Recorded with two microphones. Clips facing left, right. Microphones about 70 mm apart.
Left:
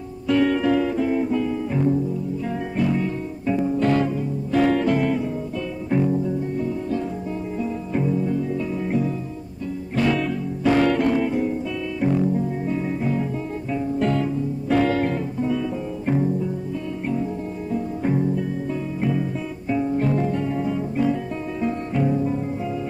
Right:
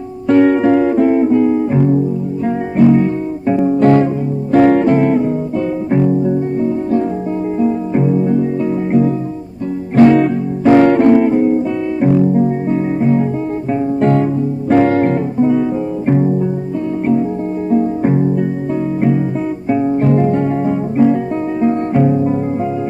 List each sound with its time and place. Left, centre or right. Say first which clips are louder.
0.3 s music: right 9 dB; right
9.9 s music: right 13 dB; right
17.6 s music: right 10 dB; right
19.7 s music: right 8 dB; right